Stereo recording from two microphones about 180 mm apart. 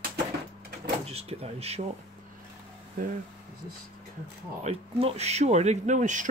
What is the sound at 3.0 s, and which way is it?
Speech, 50° right (ahead or behind).